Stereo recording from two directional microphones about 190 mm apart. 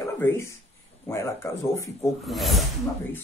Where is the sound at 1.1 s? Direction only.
15° left (ahead or behind).